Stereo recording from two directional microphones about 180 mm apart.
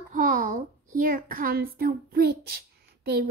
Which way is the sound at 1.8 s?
55° right (ahead or behind).